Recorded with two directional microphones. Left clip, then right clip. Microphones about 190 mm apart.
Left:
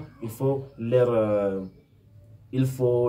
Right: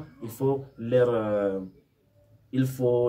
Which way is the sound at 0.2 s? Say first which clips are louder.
Even; 10° right (ahead or behind).